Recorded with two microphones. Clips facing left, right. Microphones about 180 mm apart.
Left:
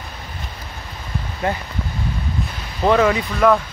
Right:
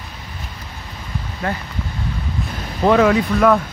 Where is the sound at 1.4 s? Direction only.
20° left (ahead or behind).